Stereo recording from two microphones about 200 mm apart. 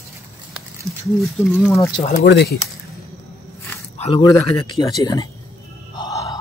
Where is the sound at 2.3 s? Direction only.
55° left (ahead or behind).